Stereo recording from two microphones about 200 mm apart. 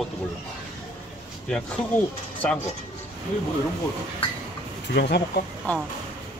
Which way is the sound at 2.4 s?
5° left (ahead or behind).